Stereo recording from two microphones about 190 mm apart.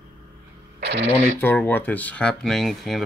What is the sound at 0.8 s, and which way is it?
Radio, 65° right (ahead or behind).